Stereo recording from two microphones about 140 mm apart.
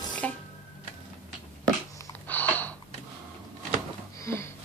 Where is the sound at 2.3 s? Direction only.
15° left (ahead or behind).